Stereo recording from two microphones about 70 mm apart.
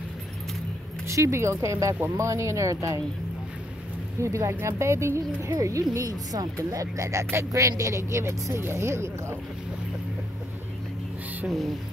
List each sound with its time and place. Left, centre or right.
1.0 s speech: right
4.2 s speech: right
11.4 s speech: centre